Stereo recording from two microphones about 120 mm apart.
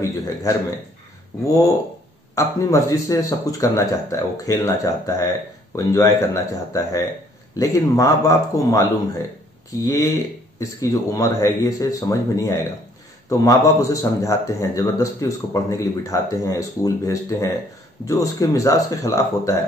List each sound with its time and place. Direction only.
0.0 s speech: 30° left (ahead or behind)
9.8 s speech: 30° left (ahead or behind)